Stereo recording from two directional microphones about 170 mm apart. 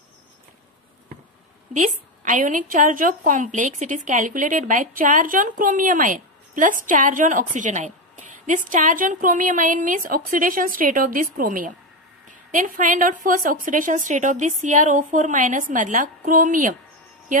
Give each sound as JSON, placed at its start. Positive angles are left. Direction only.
{"t": 1.7, "sound": "a woman's voice", "side_deg": -50}